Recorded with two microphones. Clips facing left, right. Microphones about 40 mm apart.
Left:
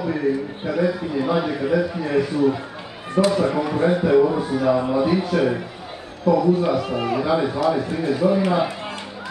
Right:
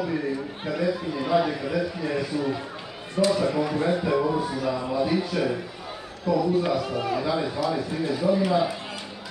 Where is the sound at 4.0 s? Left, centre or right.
Left.